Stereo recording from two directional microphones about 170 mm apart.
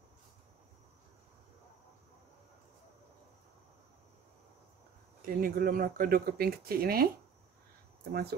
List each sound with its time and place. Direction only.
5.2 s speech: 55° right (ahead or behind)
8.1 s speech: 65° right (ahead or behind)